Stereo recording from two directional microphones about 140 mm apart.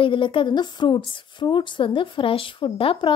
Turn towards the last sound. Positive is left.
turn(degrees=40)  # may be behind; listen again after turning